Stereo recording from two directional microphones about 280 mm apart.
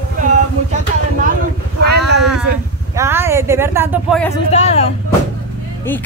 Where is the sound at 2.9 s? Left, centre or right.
Centre.